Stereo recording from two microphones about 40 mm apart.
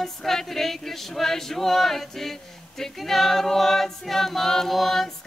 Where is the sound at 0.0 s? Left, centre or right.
Centre.